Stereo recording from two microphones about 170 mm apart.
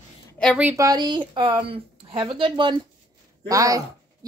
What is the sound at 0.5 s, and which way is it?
A woman's voice, 15° right (ahead or behind).